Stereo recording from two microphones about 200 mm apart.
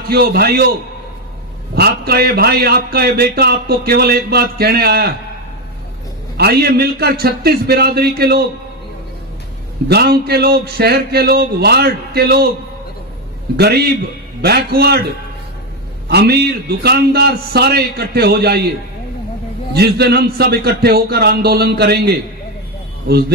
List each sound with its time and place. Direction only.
0.1 s a man's voice: 50° right (ahead or behind)
1.8 s a man's voice: 50° right (ahead or behind)
6.3 s a man's voice: 55° right (ahead or behind)
9.8 s a man's voice: 50° right (ahead or behind)
13.6 s a man's voice: 55° right (ahead or behind)
16.1 s a man's voice: 55° right (ahead or behind)
19.7 s a man's voice: 55° right (ahead or behind)